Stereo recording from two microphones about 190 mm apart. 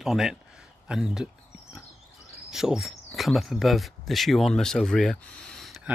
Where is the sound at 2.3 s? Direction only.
Centre (ahead or behind).